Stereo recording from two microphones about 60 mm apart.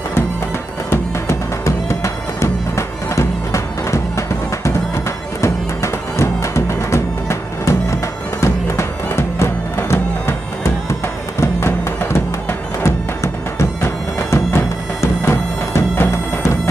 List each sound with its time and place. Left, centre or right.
1.9 s music: left
5.4 s music: left
12.8 s music: left